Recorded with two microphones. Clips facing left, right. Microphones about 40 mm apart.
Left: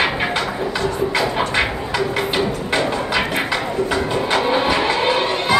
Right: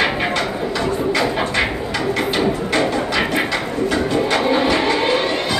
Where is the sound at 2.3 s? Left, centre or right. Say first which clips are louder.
Right 2 dB; centre.